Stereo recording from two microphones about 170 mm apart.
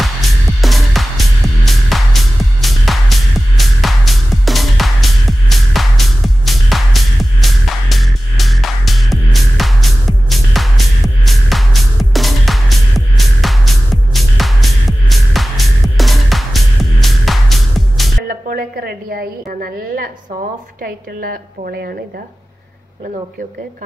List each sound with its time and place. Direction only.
0.6 s music: centre (ahead or behind)
18.3 s a woman's voice: 60° right (ahead or behind)